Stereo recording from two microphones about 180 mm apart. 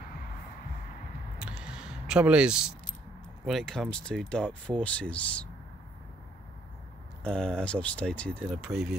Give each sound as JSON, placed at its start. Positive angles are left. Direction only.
{"t": 1.4, "sound": "a sound", "side_deg": -5}
{"t": 3.4, "sound": "speech", "side_deg": 0}
{"t": 7.2, "sound": "speech", "side_deg": 5}